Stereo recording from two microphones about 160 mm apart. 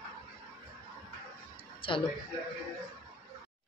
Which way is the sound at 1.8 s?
30° left (ahead or behind).